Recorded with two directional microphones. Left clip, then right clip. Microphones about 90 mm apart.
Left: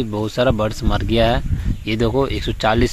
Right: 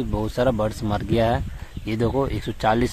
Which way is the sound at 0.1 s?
20° left (ahead or behind).